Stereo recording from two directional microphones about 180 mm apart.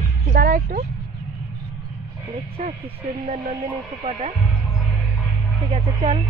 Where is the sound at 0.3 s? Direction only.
50° right (ahead or behind).